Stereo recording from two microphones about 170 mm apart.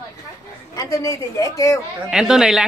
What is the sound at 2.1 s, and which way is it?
Speech, 5° right (ahead or behind).